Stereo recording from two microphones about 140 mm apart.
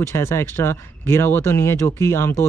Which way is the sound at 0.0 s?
20° left (ahead or behind).